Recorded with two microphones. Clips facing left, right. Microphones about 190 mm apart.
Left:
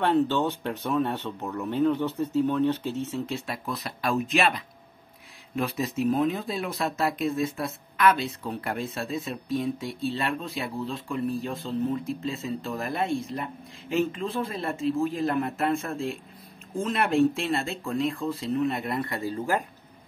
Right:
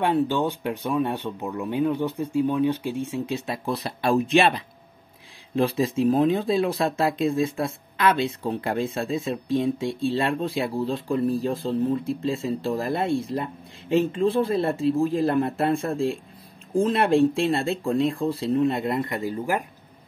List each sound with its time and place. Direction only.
0.0 s speech: 10° right (ahead or behind)